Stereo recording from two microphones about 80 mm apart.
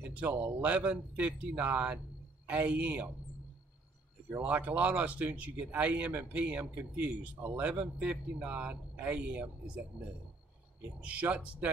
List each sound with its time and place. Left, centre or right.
0.1 s speech: centre
4.4 s speech: right
11.0 s speech: centre